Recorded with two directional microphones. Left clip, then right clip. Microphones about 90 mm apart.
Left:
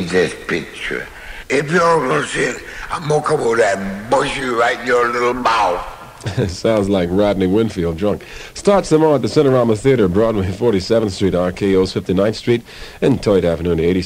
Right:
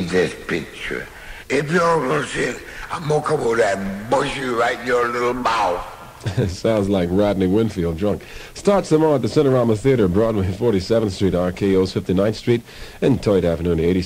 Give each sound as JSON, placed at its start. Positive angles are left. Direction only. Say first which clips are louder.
{"t": 0.0, "sound": "a man's voice", "louder": "left 3 dB", "side_deg": -30}